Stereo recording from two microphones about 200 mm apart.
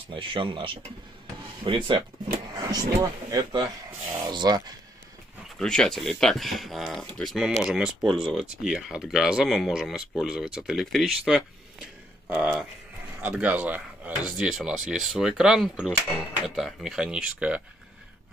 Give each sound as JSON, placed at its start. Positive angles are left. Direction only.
{"t": 0.1, "sound": "speech", "side_deg": -25}
{"t": 5.6, "sound": "speech", "side_deg": 5}